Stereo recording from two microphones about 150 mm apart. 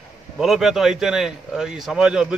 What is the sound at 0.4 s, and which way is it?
Speech, centre (ahead or behind).